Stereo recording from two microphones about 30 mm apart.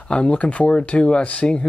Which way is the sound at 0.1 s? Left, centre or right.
Left.